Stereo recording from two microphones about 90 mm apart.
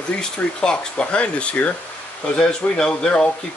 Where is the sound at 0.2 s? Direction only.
10° left (ahead or behind).